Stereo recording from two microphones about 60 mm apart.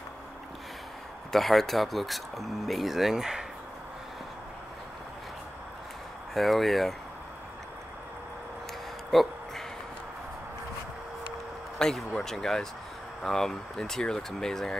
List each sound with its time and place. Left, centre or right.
1.3 s speech: centre
6.3 s speech: centre
9.1 s speech: centre
11.8 s speech: centre